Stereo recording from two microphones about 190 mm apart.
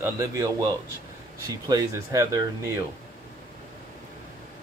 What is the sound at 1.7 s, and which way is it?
Speech, 20° right (ahead or behind).